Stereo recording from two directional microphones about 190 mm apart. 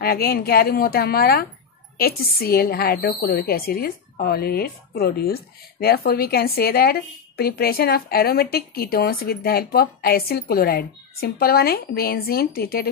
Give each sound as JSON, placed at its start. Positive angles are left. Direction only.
{"t": 0.0, "sound": "a woman's voice", "side_deg": 55}